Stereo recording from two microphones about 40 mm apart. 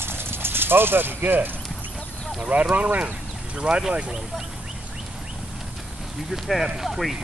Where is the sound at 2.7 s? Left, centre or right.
Right.